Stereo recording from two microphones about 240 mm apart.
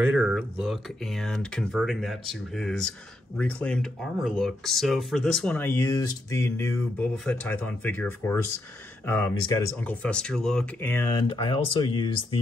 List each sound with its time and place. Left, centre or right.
0.0 s speech: centre
11.2 s speech: left